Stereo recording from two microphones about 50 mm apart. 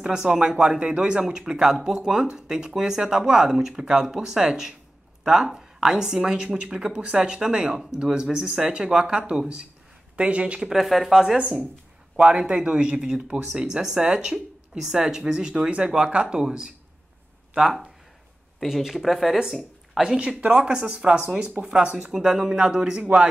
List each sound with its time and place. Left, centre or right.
0.0 s speech: centre
10.7 s speech: centre
20.2 s speech: right